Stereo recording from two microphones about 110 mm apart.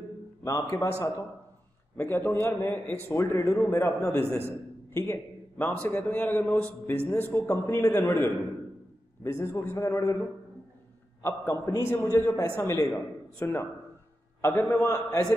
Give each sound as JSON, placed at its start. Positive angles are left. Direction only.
{"t": 0.4, "sound": "a man's voice", "side_deg": 30}
{"t": 2.0, "sound": "a man's voice", "side_deg": 20}
{"t": 7.1, "sound": "a man's voice", "side_deg": 20}
{"t": 11.2, "sound": "a man's voice", "side_deg": 25}